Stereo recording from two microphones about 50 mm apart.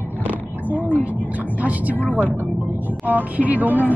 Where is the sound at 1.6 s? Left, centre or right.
Right.